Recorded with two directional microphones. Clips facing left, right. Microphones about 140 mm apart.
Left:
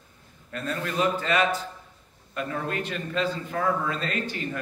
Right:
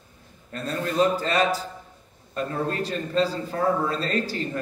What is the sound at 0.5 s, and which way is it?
A man's voice, 35° right (ahead or behind).